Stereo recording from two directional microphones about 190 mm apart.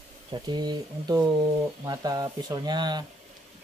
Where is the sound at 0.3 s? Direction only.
20° right (ahead or behind).